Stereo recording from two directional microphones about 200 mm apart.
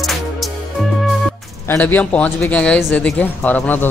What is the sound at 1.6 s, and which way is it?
Speech, 10° left (ahead or behind).